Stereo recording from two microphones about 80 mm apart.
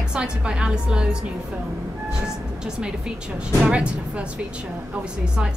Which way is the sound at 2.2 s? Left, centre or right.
Centre.